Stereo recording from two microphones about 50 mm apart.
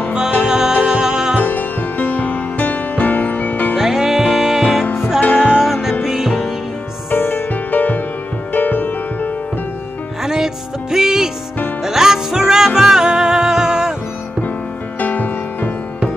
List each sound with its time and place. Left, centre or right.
0.1 s music: centre
1.4 s music: left
3.7 s music: centre
5.2 s music: left
5.6 s music: centre
7.1 s music: left
10.2 s music: centre
15.0 s music: left